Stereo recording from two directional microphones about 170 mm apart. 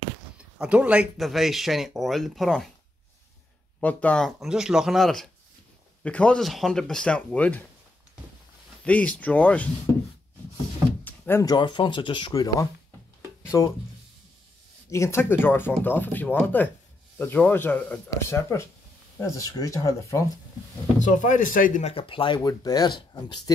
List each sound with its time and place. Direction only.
0.6 s speech: 5° right (ahead or behind)
3.8 s speech: 5° left (ahead or behind)
8.8 s speech: 10° left (ahead or behind)
11.1 s door: 15° left (ahead or behind)
11.5 s speech: 25° left (ahead or behind)
14.9 s speech: 15° left (ahead or behind)
21.0 s speech: 50° left (ahead or behind)
21.9 s speech: 30° left (ahead or behind)